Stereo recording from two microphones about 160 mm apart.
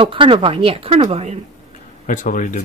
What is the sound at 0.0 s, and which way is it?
Speech, 35° right (ahead or behind).